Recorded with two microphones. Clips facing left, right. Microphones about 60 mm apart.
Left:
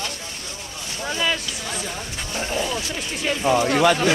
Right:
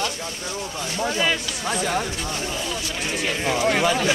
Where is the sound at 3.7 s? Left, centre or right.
Left.